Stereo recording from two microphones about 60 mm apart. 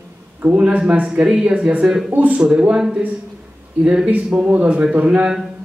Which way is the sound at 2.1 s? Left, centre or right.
Right.